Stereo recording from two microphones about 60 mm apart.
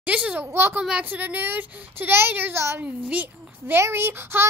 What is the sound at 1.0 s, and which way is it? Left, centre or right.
Speech, right.